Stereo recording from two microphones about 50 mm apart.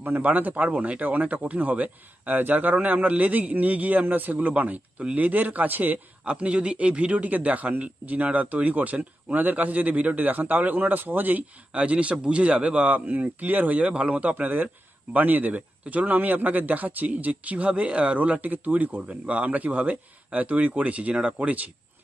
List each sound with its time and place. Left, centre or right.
0.2 s a man's voice: right
6.2 s a man's voice: right